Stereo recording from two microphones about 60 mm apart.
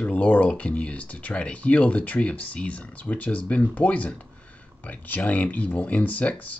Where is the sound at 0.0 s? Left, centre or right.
Left.